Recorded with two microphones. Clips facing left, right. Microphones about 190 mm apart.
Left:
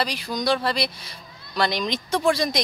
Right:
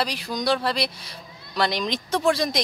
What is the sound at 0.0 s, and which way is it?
Speech, centre (ahead or behind).